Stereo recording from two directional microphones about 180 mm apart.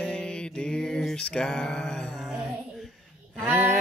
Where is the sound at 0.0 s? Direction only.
5° left (ahead or behind).